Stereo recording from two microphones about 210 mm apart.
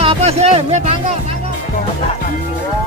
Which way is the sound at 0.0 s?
30° right (ahead or behind).